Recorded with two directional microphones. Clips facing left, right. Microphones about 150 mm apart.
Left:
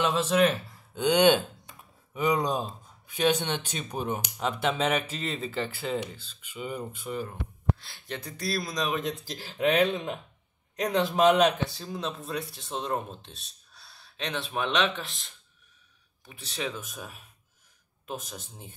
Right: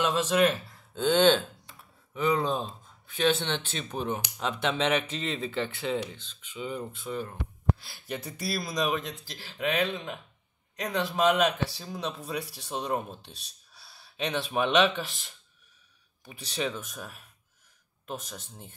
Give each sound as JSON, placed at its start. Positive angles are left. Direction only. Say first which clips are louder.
{"t": 0.0, "sound": "speech", "louder": "left 1 dB", "side_deg": 5}
{"t": 7.8, "sound": "speech", "louder": "right 2 dB", "side_deg": -5}
{"t": 9.6, "sound": "speech", "louder": "left 5 dB", "side_deg": 20}
{"t": 11.7, "sound": "speech", "louder": "left 1 dB", "side_deg": -5}